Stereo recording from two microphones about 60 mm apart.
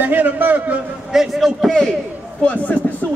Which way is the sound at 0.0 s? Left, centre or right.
Right.